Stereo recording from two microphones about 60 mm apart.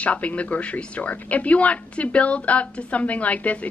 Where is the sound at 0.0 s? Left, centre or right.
Left.